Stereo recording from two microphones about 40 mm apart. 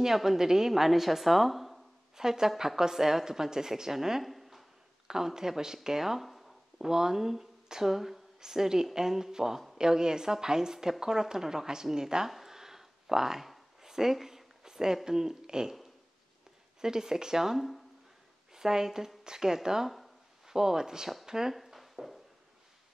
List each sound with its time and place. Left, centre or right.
0.0 s a woman's voice: centre
5.0 s a woman's voice: centre
5.8 s a sound: centre
6.9 s a woman's voice: centre
12.3 s a sound: centre
15.0 s a woman's voice: centre
16.8 s a woman's voice: centre
18.5 s a woman's voice: centre
21.7 s a sound: centre